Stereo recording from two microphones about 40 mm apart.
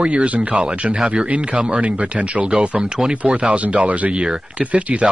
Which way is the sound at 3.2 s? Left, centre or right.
Right.